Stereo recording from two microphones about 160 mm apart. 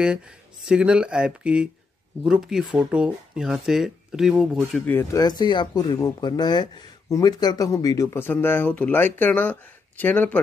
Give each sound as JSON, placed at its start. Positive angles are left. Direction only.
{"t": 0.0, "sound": "speech", "side_deg": -5}
{"t": 4.8, "sound": "speech", "side_deg": 15}
{"t": 5.2, "sound": "speech", "side_deg": 25}